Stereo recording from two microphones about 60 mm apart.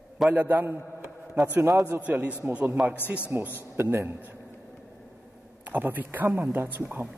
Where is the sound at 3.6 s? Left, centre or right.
Right.